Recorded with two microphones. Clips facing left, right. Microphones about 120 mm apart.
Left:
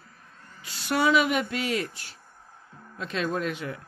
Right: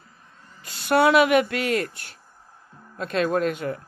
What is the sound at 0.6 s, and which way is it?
Speech, 50° right (ahead or behind).